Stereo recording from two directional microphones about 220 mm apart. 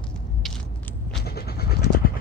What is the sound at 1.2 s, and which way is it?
Vehicle, 45° left (ahead or behind).